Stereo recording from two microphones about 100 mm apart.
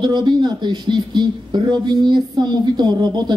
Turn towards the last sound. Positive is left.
turn(degrees=-45)  # may be behind; listen again after turning